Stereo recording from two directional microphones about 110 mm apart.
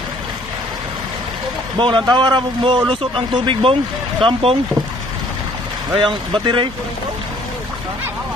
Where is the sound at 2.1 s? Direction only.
45° right (ahead or behind).